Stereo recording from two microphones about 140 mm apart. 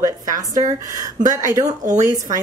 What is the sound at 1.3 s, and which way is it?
Speech, 25° right (ahead or behind).